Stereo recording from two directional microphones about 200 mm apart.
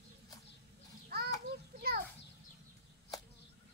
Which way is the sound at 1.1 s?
50° right (ahead or behind).